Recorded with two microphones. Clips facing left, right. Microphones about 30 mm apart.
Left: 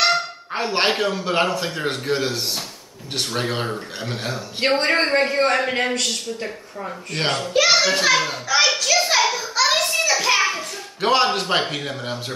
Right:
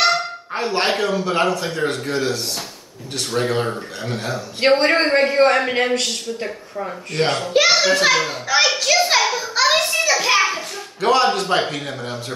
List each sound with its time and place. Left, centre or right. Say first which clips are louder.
0.0 s a sound: right 1 dB; centre
0.7 s a man's voice: right 1 dB; centre
7.2 s a child's voice: right 3 dB; centre
7.6 s children playing: even; centre
8.0 s a child's voice: right 1 dB; centre
8.5 s a sound: right 2 dB; centre
8.9 s children playing: right 2 dB; centre
11.0 s a man's voice: right 2 dB; centre